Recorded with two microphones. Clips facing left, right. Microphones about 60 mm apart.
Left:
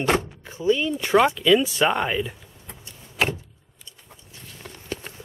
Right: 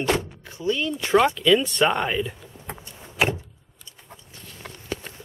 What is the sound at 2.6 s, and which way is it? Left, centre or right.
Vehicle, right.